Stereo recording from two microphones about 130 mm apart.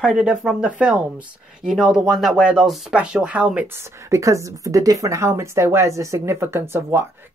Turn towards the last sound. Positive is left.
turn(degrees=-20)  # may be behind; listen again after turning